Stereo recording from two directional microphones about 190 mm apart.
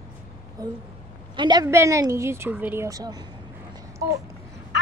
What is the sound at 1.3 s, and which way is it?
A woman's voice, 25° right (ahead or behind).